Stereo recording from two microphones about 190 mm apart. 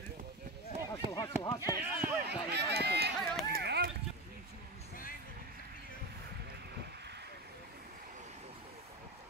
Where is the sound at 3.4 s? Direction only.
60° right (ahead or behind).